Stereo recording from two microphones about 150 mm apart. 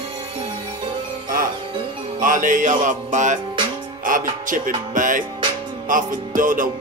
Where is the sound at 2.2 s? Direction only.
60° right (ahead or behind).